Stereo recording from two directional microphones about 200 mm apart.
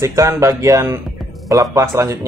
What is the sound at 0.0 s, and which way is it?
Speech, 15° right (ahead or behind).